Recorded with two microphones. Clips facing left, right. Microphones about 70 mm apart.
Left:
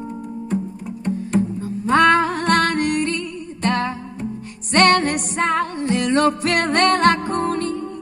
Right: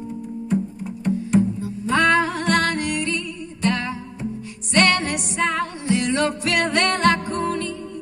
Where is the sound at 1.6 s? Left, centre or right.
Left.